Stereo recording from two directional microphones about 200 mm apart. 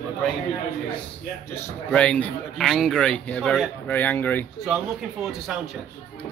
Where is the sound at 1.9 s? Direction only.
5° left (ahead or behind).